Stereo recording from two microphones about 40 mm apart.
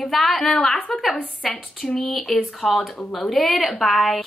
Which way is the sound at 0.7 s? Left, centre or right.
Left.